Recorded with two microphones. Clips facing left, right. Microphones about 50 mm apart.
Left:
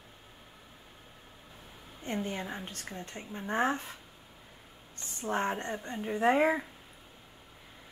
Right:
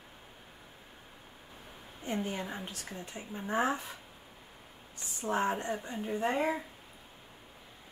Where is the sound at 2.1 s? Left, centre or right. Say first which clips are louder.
Even; centre.